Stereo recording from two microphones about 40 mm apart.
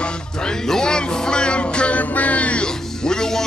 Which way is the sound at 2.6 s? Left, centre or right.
Centre.